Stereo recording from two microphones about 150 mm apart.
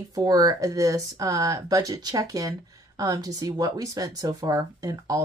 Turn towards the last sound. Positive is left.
turn(degrees=-25)  # may be behind; listen again after turning